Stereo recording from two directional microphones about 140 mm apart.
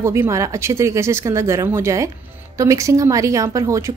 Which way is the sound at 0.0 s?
20° right (ahead or behind).